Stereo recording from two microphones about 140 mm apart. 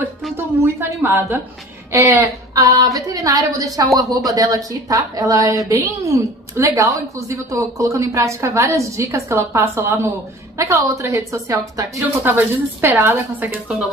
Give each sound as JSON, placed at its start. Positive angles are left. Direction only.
{"t": 0.7, "sound": "a woman's voice", "side_deg": -20}